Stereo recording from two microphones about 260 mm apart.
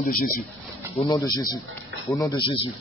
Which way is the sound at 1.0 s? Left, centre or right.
Centre.